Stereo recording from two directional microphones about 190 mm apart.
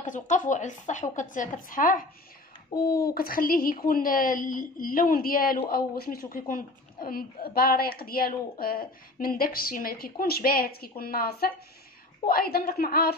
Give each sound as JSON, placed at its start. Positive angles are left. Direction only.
{"t": 0.0, "sound": "speech", "side_deg": 40}
{"t": 2.7, "sound": "speech", "side_deg": 20}
{"t": 3.2, "sound": "speech", "side_deg": 50}